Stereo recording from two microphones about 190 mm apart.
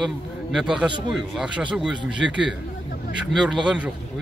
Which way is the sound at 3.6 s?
5° right (ahead or behind).